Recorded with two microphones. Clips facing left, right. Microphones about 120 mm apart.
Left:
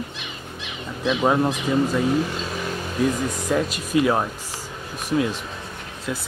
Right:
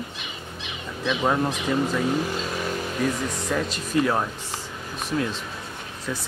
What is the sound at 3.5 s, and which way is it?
Speech, 10° left (ahead or behind).